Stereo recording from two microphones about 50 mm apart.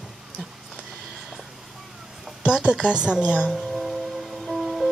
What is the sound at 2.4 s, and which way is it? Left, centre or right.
A woman's voice, centre.